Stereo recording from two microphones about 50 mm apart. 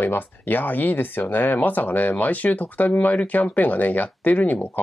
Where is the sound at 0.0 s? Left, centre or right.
Left.